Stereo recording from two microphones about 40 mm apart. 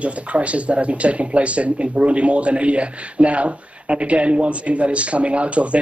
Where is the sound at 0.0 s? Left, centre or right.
Right.